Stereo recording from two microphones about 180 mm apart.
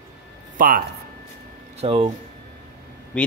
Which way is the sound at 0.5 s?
50° right (ahead or behind).